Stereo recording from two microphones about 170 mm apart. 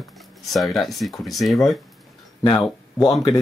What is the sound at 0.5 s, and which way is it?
Speech, centre (ahead or behind).